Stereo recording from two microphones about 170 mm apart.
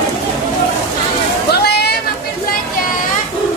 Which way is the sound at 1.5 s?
70° left (ahead or behind).